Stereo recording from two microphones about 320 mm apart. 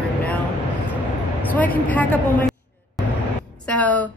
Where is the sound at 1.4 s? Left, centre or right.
Centre.